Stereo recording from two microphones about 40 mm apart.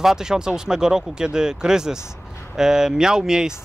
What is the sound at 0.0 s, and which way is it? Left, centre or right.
Speech, centre.